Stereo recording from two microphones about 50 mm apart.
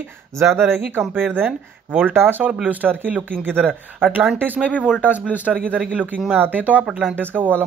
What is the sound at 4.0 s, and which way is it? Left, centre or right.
Speech, right.